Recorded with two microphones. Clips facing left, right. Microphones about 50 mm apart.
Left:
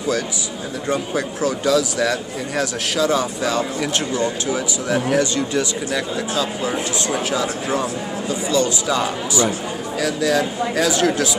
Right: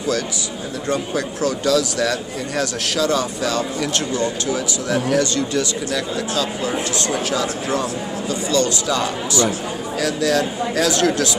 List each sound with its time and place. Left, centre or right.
0.8 s speech: centre